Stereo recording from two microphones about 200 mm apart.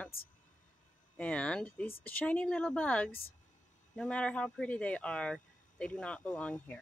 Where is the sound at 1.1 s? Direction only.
5° left (ahead or behind).